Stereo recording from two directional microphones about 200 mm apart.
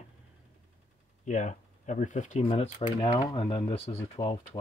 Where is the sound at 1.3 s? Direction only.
40° left (ahead or behind).